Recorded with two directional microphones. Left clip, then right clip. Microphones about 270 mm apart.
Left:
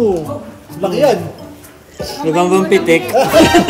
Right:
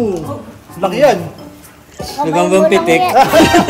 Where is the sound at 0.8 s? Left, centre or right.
Right.